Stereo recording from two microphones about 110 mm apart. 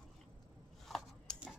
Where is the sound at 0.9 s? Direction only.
Centre (ahead or behind).